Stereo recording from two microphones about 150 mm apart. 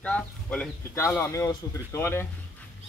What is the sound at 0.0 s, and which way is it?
Speech, 10° left (ahead or behind).